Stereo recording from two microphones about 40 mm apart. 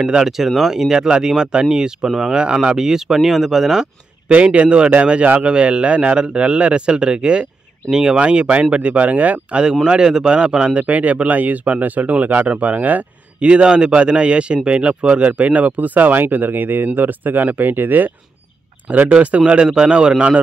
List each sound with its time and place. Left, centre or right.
0.0 s a man's voice: centre
2.7 s speech: centre
4.3 s a man's voice: right; by 8.2 s centre
8.2 s a man's voice: right
9.8 s a man's voice: centre
10.8 s speech: right
13.4 s speech: right
18.9 s speech: right
19.4 s a man's voice: right